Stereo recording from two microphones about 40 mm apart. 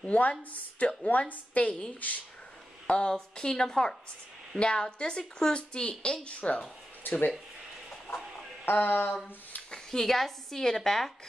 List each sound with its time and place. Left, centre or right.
0.0 s speech: left
2.9 s a woman's voice: left
7.0 s speech: left
8.6 s speech: left
9.8 s a woman's voice: centre